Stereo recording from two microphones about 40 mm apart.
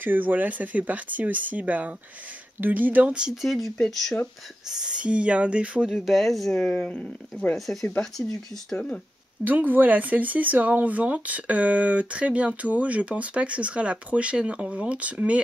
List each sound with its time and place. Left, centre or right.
0.0 s speech: right
3.1 s speech: right
3.3 s speech: centre
4.6 s speech: centre
4.9 s speech: right
5.9 s speech: centre
6.5 s speech: centre
7.5 s speech: centre
9.4 s speech: right